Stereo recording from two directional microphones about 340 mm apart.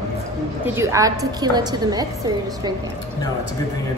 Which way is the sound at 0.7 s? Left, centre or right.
Centre.